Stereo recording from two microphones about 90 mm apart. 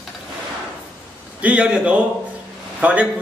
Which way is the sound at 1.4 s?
15° right (ahead or behind).